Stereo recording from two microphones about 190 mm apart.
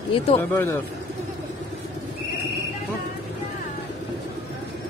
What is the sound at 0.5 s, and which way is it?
Speech, 15° left (ahead or behind).